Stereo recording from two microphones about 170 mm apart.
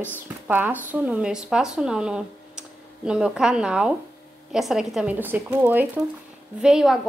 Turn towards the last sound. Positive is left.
turn(degrees=-5)  # may be behind; listen again after turning